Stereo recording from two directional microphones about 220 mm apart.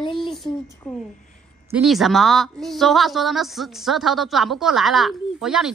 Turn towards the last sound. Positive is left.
turn(degrees=0)  # may be behind; listen again after turning